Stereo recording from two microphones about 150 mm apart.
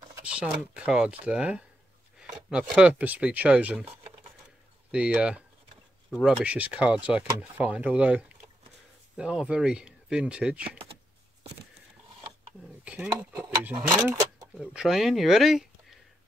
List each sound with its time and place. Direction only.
0.2 s speech: 5° right (ahead or behind)
3.8 s a sound: 40° right (ahead or behind)
4.9 s speech: 5° right (ahead or behind)
12.8 s speech: 10° right (ahead or behind)
13.3 s a sound: 15° right (ahead or behind)
14.6 s speech: 5° right (ahead or behind)